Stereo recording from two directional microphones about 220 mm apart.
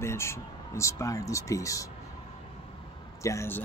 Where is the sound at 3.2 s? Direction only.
10° left (ahead or behind).